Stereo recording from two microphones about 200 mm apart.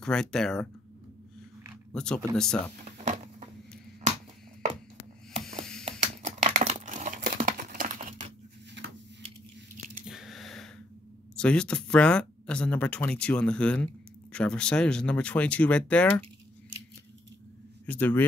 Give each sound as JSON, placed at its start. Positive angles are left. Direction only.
{"t": 0.0, "sound": "speech", "side_deg": 5}
{"t": 1.9, "sound": "speech", "side_deg": 5}
{"t": 3.0, "sound": "a sound", "side_deg": -30}
{"t": 5.9, "sound": "computer keyboard", "side_deg": -35}
{"t": 7.4, "sound": "a sound", "side_deg": -45}
{"t": 8.8, "sound": "a sound", "side_deg": -65}
{"t": 10.0, "sound": "squish", "side_deg": 0}
{"t": 11.3, "sound": "speech", "side_deg": 5}
{"t": 17.8, "sound": "speech", "side_deg": 10}